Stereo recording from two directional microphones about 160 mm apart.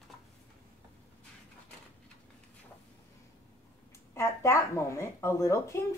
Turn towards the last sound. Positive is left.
turn(degrees=15)  # may be behind; listen again after turning